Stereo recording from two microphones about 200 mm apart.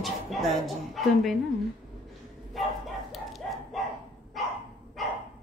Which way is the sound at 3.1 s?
Centre (ahead or behind).